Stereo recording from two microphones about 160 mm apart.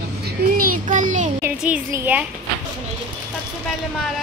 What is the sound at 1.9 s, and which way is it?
Speech, 10° right (ahead or behind).